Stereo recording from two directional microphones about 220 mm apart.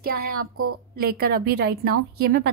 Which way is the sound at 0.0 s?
45° right (ahead or behind).